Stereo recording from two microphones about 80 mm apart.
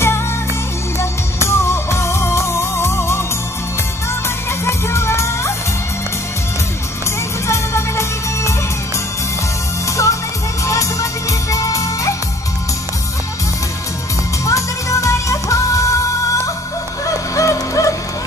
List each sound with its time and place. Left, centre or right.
0.9 s music: left
4.5 s music: left
7.4 s music: left
9.8 s music: left
14.4 s music: left
17.0 s a sound: left